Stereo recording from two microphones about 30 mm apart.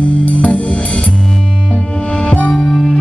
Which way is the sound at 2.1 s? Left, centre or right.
Left.